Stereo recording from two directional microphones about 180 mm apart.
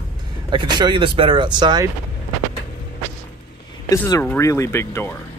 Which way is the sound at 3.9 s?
20° left (ahead or behind).